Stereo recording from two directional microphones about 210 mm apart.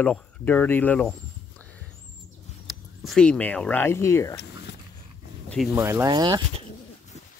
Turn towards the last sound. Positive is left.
turn(degrees=-20)  # may be behind; listen again after turning